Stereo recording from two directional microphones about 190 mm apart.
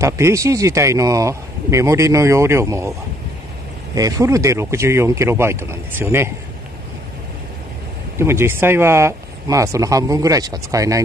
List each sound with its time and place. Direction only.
0.0 s a man's voice: 15° right (ahead or behind)
3.9 s a man's voice: 15° right (ahead or behind)
8.2 s a man's voice: 15° right (ahead or behind)